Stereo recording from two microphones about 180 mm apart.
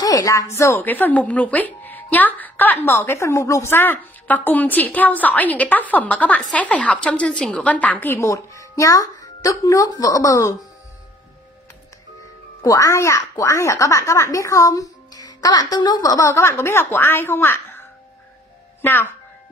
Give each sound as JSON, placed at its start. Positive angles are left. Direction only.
{"t": 0.0, "sound": "a woman's voice", "side_deg": 20}
{"t": 12.6, "sound": "a woman's voice", "side_deg": 20}
{"t": 18.8, "sound": "a woman's voice", "side_deg": 10}